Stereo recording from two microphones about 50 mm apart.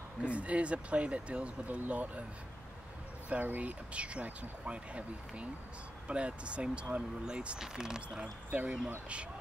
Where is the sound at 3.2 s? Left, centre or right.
Right; by 8.3 s centre.